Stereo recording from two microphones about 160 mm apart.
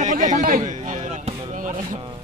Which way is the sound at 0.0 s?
50° right (ahead or behind).